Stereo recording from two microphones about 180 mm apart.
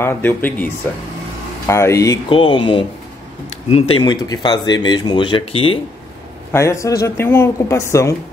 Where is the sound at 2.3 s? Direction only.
30° left (ahead or behind).